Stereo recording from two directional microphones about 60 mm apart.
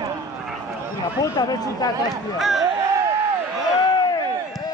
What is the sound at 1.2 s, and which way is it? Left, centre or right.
Speech, left.